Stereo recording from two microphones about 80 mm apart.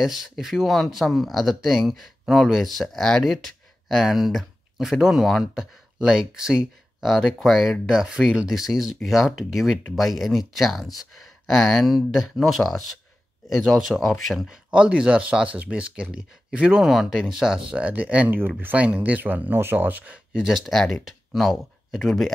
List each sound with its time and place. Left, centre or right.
0.0 s speech: centre
14.7 s speech: centre
20.3 s speech: centre